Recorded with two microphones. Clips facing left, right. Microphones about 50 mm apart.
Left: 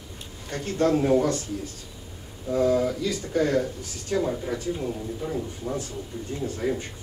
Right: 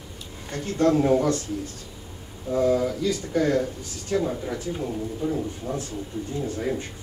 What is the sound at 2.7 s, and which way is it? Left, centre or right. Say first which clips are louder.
Speech: even; centre.